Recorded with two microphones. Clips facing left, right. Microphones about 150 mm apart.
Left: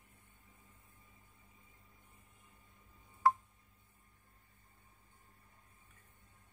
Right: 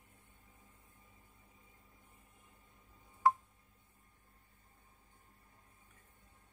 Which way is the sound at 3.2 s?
20° right (ahead or behind).